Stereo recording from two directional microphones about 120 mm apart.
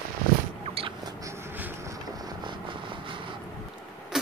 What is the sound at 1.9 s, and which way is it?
Vehicle, 35° right (ahead or behind).